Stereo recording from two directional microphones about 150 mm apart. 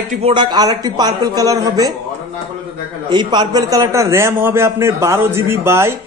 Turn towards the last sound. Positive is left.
turn(degrees=-15)  # may be behind; listen again after turning